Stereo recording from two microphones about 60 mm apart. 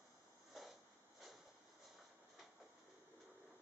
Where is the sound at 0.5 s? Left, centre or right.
Centre.